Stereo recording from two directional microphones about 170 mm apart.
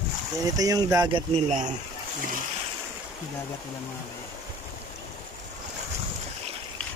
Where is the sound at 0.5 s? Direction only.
20° right (ahead or behind).